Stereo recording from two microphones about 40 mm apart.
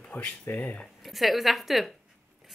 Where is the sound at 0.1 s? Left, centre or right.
Left.